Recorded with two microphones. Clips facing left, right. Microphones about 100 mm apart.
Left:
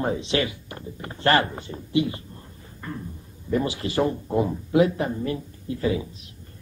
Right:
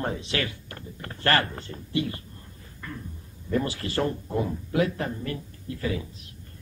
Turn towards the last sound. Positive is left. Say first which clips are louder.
# left 5 dB
turn(degrees=20)  # may be behind; listen again after turning